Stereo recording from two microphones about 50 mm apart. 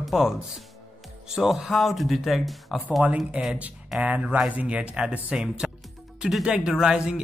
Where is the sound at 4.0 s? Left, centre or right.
Right.